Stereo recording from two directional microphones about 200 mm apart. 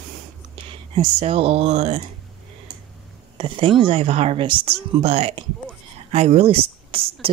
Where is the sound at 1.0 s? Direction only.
30° right (ahead or behind).